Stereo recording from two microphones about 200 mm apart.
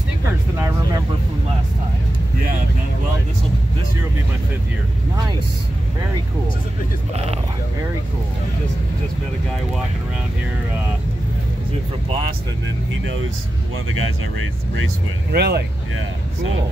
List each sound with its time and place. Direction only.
0.6 s vehicle: 15° right (ahead or behind)
15.3 s speech: 55° right (ahead or behind)